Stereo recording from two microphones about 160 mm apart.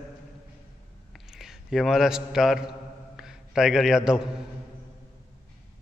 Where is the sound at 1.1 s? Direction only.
Centre (ahead or behind).